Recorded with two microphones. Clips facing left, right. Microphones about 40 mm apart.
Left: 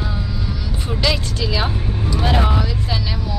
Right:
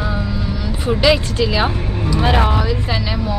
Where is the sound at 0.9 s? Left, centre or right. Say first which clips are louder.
Right 7 dB; centre.